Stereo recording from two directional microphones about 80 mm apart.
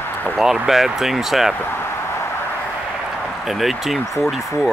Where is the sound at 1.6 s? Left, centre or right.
Left.